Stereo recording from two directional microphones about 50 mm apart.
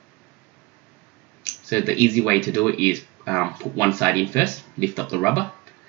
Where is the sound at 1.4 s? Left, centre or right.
Left.